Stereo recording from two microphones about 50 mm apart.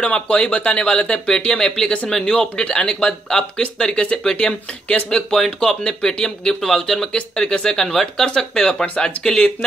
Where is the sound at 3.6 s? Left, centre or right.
Left.